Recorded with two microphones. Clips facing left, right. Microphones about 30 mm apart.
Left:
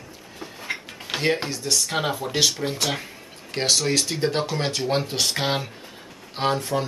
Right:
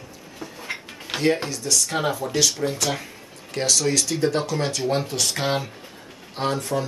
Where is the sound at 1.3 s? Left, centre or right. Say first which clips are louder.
Even; centre.